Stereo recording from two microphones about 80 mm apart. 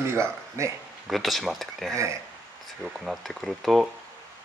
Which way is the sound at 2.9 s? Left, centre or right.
Centre.